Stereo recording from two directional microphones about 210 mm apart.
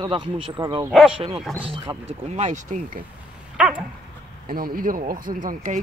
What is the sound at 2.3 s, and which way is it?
Speech, 35° right (ahead or behind).